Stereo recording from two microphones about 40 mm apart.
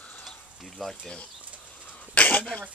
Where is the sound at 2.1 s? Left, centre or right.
Left.